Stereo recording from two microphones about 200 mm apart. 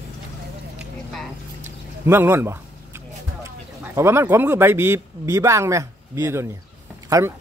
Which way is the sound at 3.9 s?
15° right (ahead or behind).